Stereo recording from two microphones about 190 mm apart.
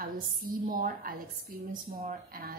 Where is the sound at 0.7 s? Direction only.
50° right (ahead or behind).